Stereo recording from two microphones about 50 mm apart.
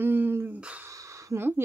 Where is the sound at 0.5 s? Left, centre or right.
Right.